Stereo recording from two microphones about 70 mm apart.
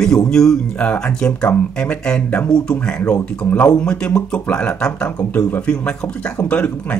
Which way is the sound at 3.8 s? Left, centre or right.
Centre.